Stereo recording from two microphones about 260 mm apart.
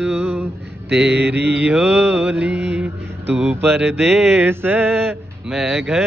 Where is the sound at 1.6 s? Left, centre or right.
Centre.